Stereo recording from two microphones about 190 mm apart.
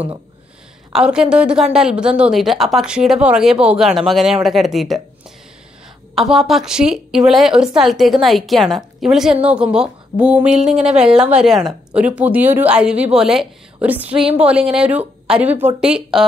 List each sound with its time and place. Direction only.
0.9 s a woman's voice: 5° right (ahead or behind)
6.1 s a woman's voice: centre (ahead or behind)